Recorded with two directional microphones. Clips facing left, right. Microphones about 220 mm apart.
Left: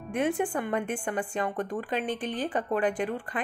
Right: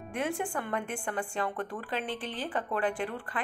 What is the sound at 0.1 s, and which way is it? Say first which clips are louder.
A woman's voice: left 5 dB; 20° left (ahead or behind).